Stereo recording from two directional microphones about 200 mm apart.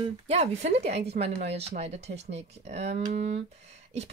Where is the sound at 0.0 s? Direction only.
30° right (ahead or behind).